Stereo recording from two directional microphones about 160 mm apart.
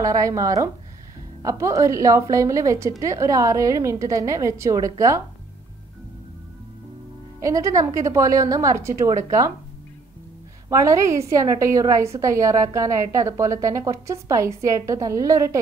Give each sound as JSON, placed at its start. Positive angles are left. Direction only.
{"t": 0.0, "sound": "a woman's voice", "side_deg": -20}
{"t": 7.4, "sound": "a woman's voice", "side_deg": -20}
{"t": 10.9, "sound": "a woman's voice", "side_deg": -20}